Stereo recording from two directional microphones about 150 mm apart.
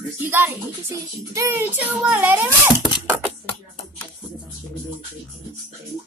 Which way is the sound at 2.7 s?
30° left (ahead or behind).